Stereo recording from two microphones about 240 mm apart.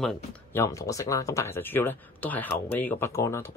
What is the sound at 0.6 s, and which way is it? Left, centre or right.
Speech, centre.